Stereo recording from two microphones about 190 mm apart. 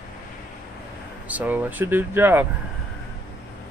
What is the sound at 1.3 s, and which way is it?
Speech, 10° right (ahead or behind).